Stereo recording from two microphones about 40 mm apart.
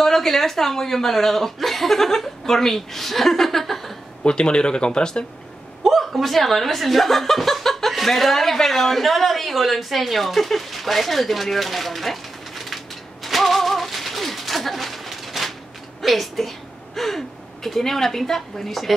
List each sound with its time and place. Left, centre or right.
0.0 s speech: centre
4.2 s speech: left
5.9 s a woman's voice: centre